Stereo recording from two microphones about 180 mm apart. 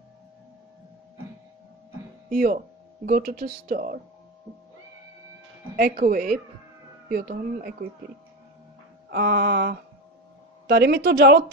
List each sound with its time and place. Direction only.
2.3 s speech: 55° right (ahead or behind)
5.8 s speech: 55° right (ahead or behind)
9.1 s a woman's voice: 65° right (ahead or behind)